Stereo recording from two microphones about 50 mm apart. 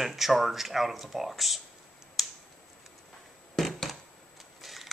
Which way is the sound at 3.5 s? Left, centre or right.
Centre.